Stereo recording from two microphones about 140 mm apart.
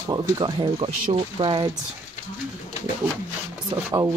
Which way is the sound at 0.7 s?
45° right (ahead or behind).